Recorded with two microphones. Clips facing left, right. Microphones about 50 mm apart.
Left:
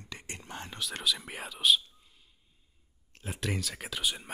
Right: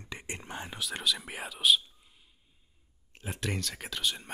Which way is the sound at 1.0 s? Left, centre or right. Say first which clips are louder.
Even; centre.